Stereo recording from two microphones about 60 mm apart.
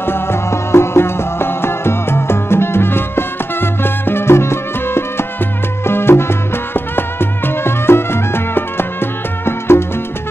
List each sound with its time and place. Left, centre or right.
0.0 s music: left